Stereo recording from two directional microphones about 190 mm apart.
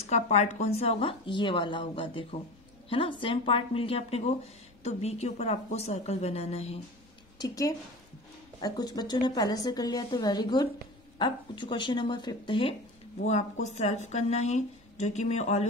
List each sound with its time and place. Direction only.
0.0 s a woman's voice: 35° left (ahead or behind)
7.3 s a woman's voice: 20° left (ahead or behind); by 15.6 s 35° left (ahead or behind)